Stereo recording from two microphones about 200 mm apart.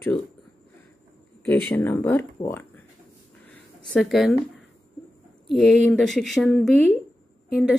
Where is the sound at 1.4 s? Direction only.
10° left (ahead or behind).